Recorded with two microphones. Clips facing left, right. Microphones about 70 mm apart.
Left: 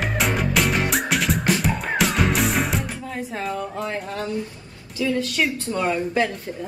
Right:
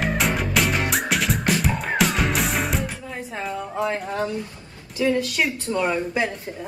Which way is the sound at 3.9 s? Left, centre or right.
Right.